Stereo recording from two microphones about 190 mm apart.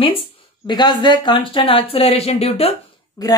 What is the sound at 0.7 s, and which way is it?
Speech, 20° left (ahead or behind).